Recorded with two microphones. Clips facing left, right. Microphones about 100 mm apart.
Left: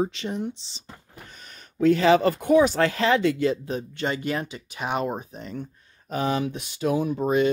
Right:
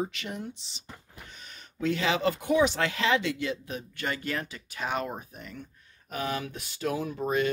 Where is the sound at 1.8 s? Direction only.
45° left (ahead or behind).